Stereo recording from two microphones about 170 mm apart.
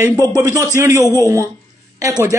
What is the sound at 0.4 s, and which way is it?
Speech, 20° right (ahead or behind).